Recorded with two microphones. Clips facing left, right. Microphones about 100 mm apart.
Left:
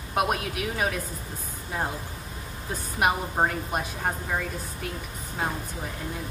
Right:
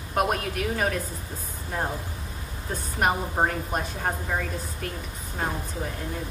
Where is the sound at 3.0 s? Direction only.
5° left (ahead or behind).